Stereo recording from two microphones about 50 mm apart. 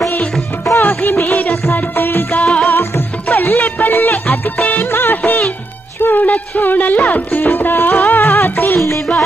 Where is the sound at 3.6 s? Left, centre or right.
Left.